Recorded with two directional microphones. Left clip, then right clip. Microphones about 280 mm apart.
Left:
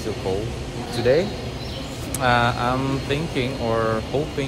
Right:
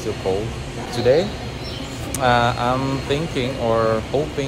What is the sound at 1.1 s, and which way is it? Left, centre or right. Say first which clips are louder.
Speech: right 2 dB; centre.